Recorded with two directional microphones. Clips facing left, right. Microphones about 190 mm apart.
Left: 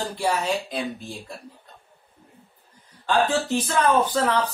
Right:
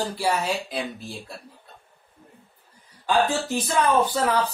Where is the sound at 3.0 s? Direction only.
10° right (ahead or behind).